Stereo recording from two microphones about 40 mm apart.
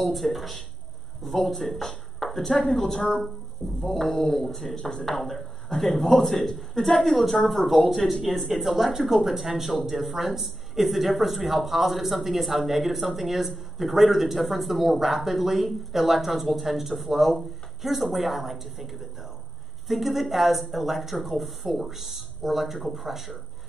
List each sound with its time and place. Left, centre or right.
0.0 s a man's voice: centre